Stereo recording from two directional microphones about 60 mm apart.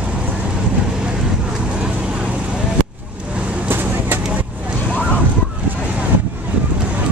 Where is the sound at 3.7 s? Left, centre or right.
Right.